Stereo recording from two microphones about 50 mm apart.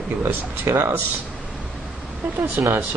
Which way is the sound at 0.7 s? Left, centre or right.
Right.